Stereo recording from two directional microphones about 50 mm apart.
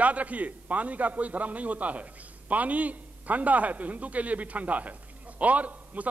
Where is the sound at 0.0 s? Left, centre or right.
Right.